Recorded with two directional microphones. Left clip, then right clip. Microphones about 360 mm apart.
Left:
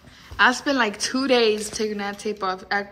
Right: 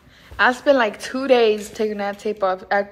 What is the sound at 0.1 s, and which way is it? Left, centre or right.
A woman's voice, centre.